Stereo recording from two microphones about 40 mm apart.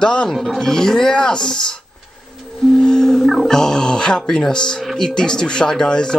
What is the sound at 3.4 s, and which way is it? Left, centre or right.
Speech, centre.